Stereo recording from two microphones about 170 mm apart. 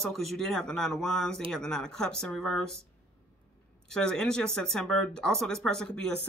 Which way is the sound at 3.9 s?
5° left (ahead or behind).